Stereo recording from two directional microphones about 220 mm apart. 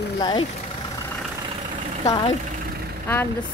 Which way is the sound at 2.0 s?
20° left (ahead or behind).